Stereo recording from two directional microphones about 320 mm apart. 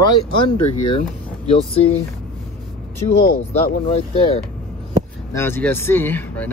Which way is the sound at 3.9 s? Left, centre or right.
Centre.